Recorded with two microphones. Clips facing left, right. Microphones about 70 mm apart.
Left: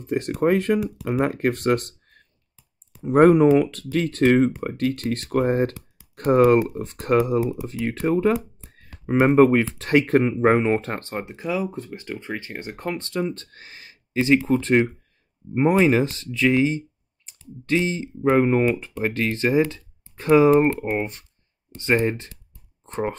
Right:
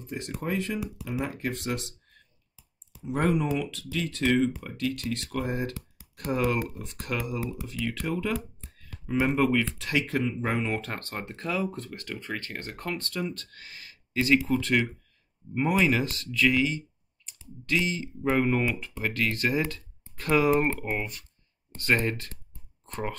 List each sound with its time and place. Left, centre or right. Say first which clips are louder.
0.0 s speech: left 13 dB; left
21.7 s speech: left 5 dB; left